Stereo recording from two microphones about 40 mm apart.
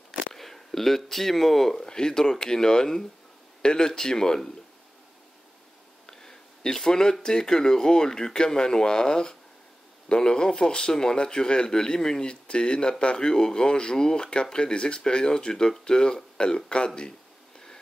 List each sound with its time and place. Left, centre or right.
0.3 s speech: centre
6.0 s a man's voice: centre